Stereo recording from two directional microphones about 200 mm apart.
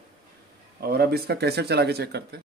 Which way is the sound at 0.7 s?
50° right (ahead or behind).